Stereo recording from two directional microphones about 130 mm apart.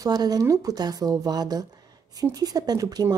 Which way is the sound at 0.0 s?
30° right (ahead or behind).